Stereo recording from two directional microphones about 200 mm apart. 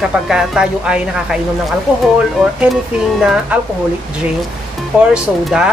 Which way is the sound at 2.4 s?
5° right (ahead or behind).